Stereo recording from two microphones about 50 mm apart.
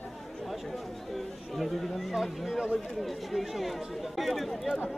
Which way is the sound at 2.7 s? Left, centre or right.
Centre.